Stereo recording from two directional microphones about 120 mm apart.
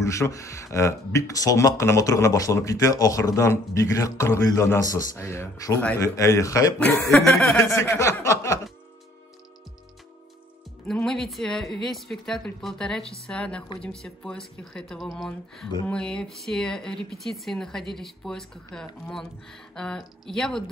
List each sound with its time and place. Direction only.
0.0 s speech: 25° left (ahead or behind)
7.2 s speech: 5° left (ahead or behind)
7.9 s a sound: 25° left (ahead or behind)
10.9 s speech: 5° left (ahead or behind)